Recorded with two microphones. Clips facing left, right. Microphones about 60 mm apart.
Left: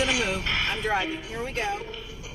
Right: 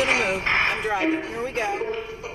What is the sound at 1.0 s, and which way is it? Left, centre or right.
Speech, right.